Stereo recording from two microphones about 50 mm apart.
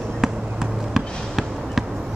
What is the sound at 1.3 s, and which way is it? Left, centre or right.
Basketball bounce, centre.